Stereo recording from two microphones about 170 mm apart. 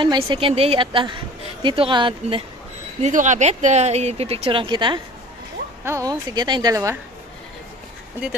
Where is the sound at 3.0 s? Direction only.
45° right (ahead or behind); by 7.0 s 20° right (ahead or behind).